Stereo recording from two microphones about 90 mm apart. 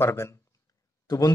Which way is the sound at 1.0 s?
45° left (ahead or behind).